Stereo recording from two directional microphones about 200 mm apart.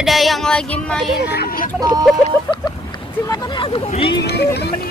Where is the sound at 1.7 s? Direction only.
15° right (ahead or behind).